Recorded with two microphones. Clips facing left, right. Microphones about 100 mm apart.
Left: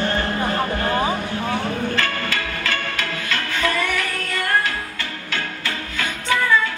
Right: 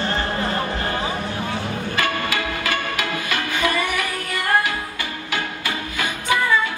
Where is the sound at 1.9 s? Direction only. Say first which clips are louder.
Right 1 dB; 15° right (ahead or behind).